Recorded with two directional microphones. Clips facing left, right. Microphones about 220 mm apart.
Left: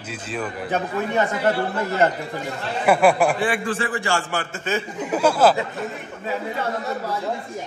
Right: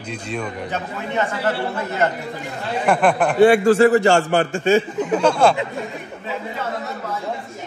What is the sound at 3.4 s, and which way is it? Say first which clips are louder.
Speech: right 12 dB; 40° right (ahead or behind).